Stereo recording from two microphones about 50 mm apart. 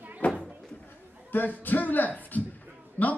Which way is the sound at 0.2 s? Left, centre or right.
Left.